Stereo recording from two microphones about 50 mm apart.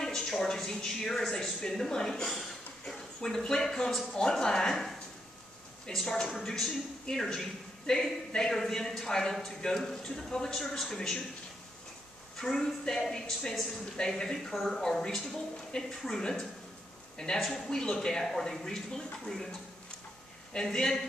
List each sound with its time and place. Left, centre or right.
0.0 s speech: centre
5.9 s speech: centre
12.4 s speech: centre
20.5 s speech: centre